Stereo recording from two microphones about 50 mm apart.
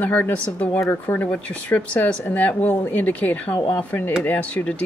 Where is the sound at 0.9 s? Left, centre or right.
Left.